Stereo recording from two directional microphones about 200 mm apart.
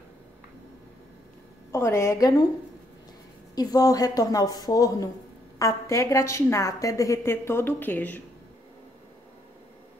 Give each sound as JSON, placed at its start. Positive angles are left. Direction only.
{"t": 1.7, "sound": "a woman's voice", "side_deg": 15}
{"t": 3.5, "sound": "a woman's voice", "side_deg": 20}